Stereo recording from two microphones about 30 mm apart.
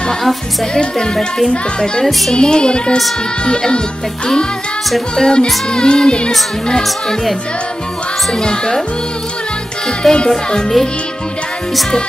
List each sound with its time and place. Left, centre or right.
0.7 s speech: left
2.3 s speech: left
5.1 s speech: left
8.3 s speech: left
10.0 s music: centre